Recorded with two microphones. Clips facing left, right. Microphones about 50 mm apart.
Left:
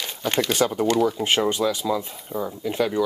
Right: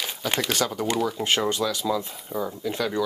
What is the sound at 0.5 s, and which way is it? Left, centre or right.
Speech, centre.